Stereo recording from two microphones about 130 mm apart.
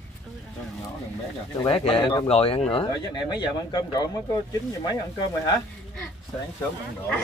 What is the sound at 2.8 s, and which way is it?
A man's voice, 35° left (ahead or behind).